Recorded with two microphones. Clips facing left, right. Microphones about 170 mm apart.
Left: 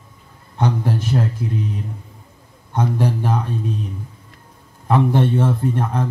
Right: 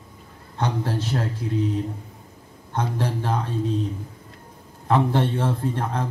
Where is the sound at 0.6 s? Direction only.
15° left (ahead or behind).